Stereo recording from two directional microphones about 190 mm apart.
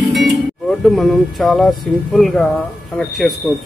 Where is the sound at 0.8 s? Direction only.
Centre (ahead or behind).